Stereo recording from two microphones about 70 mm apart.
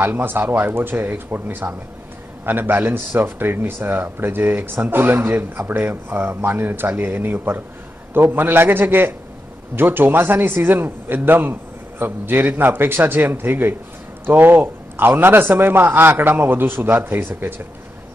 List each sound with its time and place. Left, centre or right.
0.0 s a man's voice: right